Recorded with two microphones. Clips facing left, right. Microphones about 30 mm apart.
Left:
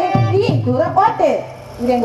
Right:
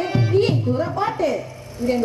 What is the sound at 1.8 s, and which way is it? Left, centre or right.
Speech, left.